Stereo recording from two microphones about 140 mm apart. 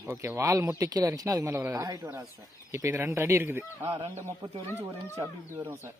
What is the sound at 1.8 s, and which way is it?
Speech, 25° right (ahead or behind).